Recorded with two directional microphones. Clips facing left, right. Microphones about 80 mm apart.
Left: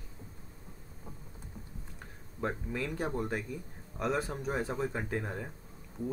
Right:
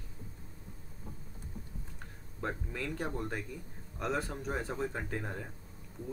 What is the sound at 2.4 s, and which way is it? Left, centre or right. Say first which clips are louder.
Speech: left 3 dB; centre.